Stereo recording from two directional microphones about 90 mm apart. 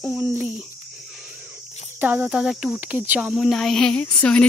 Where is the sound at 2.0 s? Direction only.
20° right (ahead or behind).